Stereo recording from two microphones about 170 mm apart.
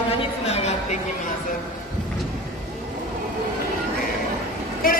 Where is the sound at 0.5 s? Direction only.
40° left (ahead or behind).